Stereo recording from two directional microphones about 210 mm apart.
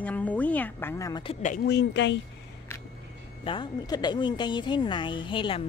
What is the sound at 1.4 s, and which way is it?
Speech, 45° left (ahead or behind).